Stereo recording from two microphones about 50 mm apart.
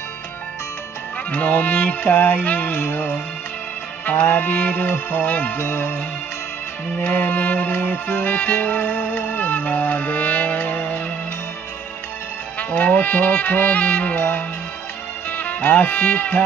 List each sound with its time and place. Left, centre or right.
1.3 s music: left
4.0 s music: left
7.0 s music: left
12.5 s music: left
15.2 s speech: left